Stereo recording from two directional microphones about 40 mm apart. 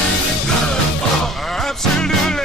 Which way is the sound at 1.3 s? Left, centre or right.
Centre.